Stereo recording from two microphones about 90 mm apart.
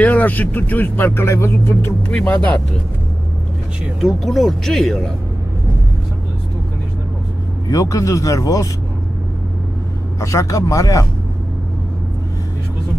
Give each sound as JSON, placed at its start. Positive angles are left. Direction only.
{"t": 0.0, "sound": "a man's voice", "side_deg": 20}
{"t": 2.0, "sound": "speech", "side_deg": 15}
{"t": 4.0, "sound": "speech", "side_deg": 0}
{"t": 7.6, "sound": "speech", "side_deg": 40}
{"t": 10.2, "sound": "speech", "side_deg": 35}